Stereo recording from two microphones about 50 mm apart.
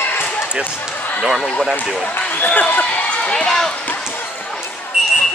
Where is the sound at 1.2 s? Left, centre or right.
Centre.